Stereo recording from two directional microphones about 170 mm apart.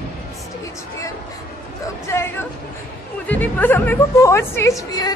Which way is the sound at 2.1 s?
15° left (ahead or behind).